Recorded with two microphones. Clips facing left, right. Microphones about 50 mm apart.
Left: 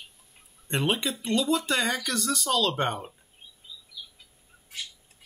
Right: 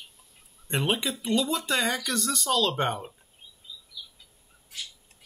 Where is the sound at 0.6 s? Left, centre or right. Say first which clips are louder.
Even; centre.